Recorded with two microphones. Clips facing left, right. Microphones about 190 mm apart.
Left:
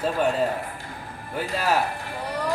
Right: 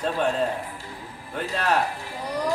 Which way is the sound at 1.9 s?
55° left (ahead or behind).